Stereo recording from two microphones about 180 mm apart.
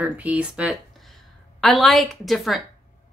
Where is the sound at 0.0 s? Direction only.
10° right (ahead or behind).